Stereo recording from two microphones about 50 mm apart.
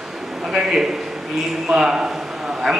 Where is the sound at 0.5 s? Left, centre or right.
Centre.